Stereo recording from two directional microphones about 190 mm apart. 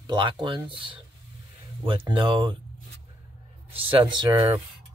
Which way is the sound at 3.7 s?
25° right (ahead or behind).